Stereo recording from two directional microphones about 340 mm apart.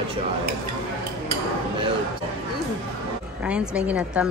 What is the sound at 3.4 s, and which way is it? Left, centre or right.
Speech, centre.